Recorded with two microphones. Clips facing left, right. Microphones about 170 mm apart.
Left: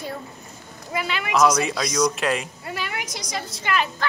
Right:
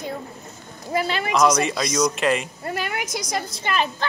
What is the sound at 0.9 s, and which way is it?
Speech, 35° right (ahead or behind).